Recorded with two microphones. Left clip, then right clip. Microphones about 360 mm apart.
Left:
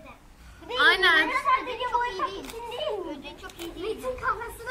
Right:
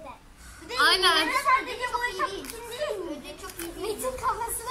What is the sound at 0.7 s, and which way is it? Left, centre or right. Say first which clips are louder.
Speech: left 1 dB; centre.